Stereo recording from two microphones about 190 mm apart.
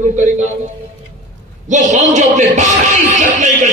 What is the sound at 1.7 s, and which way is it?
A man's voice, 40° right (ahead or behind).